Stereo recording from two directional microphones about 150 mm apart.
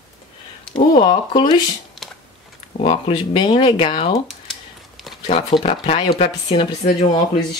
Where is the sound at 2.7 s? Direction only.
40° left (ahead or behind).